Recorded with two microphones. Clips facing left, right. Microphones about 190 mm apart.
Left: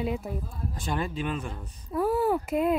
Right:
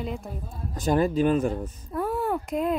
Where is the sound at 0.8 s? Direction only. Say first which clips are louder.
Right 10 dB; 40° right (ahead or behind).